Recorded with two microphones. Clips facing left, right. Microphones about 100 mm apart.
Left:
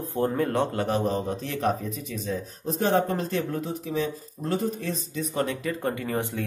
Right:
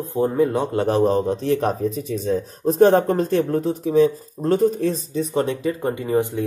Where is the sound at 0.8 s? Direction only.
40° right (ahead or behind).